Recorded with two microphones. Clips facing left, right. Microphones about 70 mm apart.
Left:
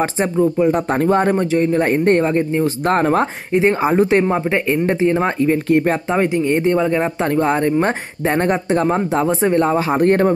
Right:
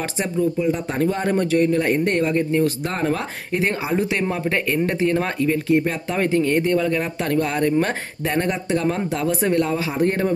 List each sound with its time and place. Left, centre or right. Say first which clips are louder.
0.0 s speech: left 6 dB; left
0.6 s speech: left 5 dB; left
1.4 s speech: left 2 dB; left
2.8 s speech: left 8 dB; left
4.5 s speech: left 4 dB; left
5.7 s speech: left 4 dB; left
6.0 s speech: left 3 dB; centre; by 10.3 s left